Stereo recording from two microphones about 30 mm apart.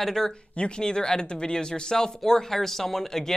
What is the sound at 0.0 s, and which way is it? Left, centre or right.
Speech, centre.